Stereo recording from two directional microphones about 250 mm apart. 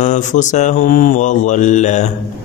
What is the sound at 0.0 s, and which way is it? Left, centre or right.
Mantra, left.